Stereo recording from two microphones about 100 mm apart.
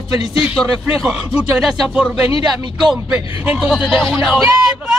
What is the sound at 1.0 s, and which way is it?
Speech, 5° right (ahead or behind).